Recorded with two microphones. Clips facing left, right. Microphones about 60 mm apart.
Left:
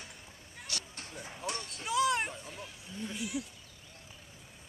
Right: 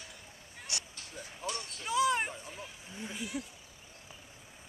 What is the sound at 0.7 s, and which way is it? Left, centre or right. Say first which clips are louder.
Speech: even; right.